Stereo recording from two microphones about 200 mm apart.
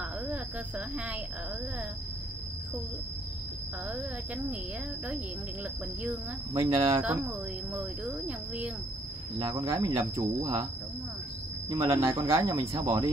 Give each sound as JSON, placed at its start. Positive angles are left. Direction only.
{"t": 0.3, "sound": "speech", "side_deg": -5}
{"t": 6.6, "sound": "speech", "side_deg": -25}
{"t": 7.0, "sound": "speech", "side_deg": -10}
{"t": 9.4, "sound": "speech", "side_deg": -25}
{"t": 11.7, "sound": "speech", "side_deg": -20}